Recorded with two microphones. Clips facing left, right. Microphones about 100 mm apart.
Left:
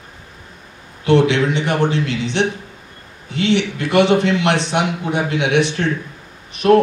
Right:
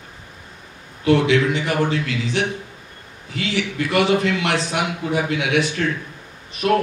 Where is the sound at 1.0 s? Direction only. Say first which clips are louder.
Left 2 dB; 25° left (ahead or behind).